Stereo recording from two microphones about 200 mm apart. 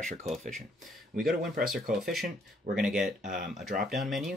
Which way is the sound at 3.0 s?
40° right (ahead or behind).